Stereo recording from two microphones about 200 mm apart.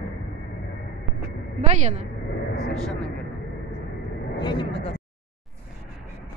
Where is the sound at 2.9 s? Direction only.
5° left (ahead or behind).